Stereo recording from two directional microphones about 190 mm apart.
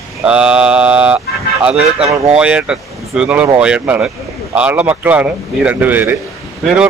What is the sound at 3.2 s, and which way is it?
Speech, 5° right (ahead or behind).